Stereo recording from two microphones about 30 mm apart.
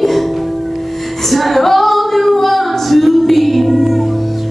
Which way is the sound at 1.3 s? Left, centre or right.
Centre.